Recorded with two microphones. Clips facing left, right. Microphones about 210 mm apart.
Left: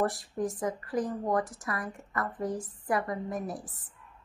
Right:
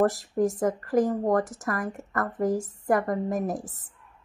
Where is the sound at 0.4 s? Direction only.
45° right (ahead or behind).